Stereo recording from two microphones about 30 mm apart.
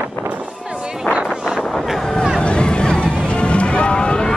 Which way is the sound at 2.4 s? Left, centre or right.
Left.